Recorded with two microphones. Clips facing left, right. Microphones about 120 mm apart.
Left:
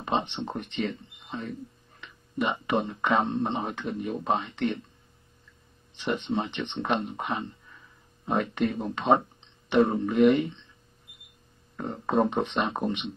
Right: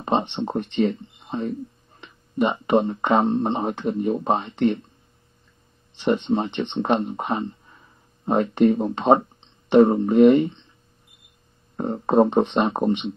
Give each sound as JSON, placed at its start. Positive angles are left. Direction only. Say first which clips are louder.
{"t": 0.0, "sound": "speech", "louder": "right 6 dB", "side_deg": -35}
{"t": 5.9, "sound": "speech", "louder": "right 7 dB", "side_deg": -30}
{"t": 11.7, "sound": "speech", "louder": "right 7 dB", "side_deg": -35}